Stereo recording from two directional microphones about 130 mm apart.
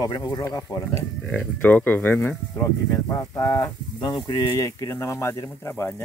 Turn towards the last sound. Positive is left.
turn(degrees=20)  # may be behind; listen again after turning